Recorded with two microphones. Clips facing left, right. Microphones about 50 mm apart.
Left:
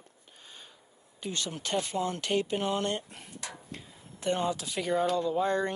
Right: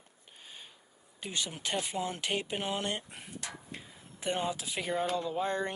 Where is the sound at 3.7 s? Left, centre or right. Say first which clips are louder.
Left 1 dB; centre.